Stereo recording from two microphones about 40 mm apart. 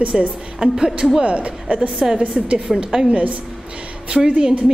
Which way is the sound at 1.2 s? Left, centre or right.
Right.